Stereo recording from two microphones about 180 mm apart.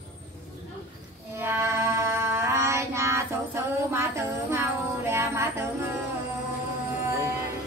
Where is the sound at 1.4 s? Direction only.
15° right (ahead or behind).